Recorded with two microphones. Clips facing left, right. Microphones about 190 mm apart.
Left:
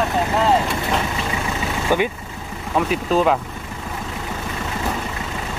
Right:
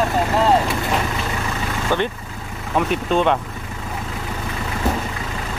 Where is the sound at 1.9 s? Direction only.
10° left (ahead or behind).